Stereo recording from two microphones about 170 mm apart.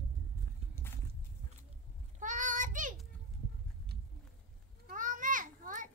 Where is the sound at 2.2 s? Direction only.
50° right (ahead or behind).